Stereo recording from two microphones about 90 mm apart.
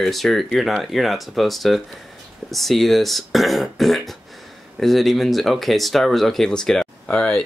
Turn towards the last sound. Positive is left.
turn(degrees=10)  # may be behind; listen again after turning